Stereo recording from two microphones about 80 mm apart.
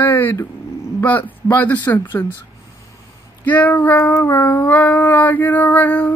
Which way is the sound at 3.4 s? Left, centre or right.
Centre.